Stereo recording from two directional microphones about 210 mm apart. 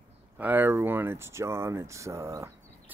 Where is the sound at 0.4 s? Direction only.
10° right (ahead or behind).